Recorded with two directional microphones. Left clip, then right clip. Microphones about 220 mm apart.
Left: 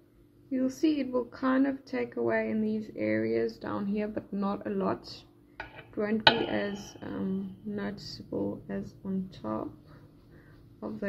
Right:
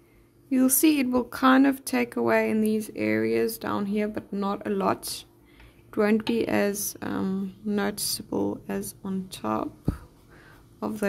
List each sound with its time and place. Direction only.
0.5 s speech: 60° right (ahead or behind)